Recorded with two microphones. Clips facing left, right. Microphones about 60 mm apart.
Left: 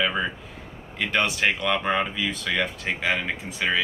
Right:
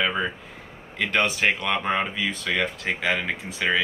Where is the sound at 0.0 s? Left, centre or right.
Centre.